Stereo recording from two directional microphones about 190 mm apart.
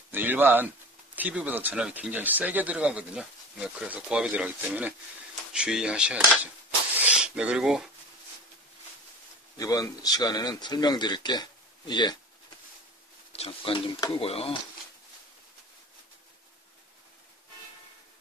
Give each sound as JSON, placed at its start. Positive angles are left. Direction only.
{"t": 0.1, "sound": "speech", "side_deg": -10}
{"t": 9.6, "sound": "speech", "side_deg": 20}
{"t": 13.4, "sound": "speech", "side_deg": 30}